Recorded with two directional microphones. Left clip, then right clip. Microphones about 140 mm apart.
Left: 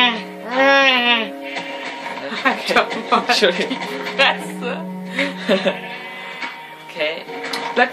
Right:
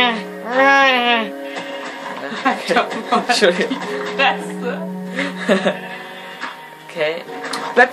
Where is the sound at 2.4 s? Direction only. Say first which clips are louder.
Even; 35° left (ahead or behind).